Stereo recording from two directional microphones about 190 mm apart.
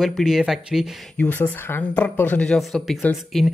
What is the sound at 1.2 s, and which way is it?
Speech, 10° left (ahead or behind).